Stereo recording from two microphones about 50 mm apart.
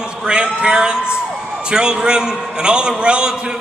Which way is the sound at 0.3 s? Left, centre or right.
Centre.